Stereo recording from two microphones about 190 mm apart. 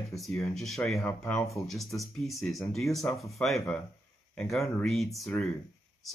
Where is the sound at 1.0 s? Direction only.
10° left (ahead or behind).